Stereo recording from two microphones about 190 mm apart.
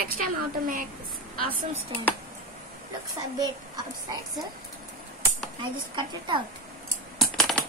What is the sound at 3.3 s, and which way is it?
Speech, 20° right (ahead or behind).